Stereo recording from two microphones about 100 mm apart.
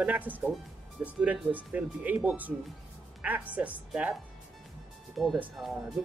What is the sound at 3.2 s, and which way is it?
Speech, 15° right (ahead or behind).